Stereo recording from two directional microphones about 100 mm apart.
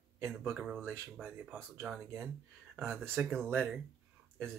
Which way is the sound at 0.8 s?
30° right (ahead or behind).